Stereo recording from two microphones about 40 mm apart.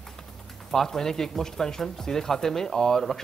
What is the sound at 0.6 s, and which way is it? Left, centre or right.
Speech, centre.